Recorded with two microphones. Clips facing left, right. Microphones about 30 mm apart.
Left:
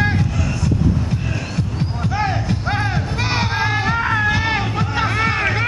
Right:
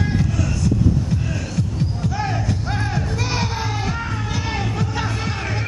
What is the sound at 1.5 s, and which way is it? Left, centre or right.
Music, left.